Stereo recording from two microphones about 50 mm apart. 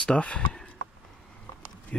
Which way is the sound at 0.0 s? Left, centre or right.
Left.